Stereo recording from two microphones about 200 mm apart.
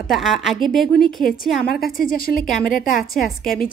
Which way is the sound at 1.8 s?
45° left (ahead or behind).